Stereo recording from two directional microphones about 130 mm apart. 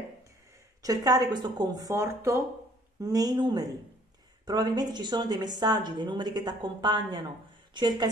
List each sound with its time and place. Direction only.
0.8 s a woman's voice: 30° right (ahead or behind)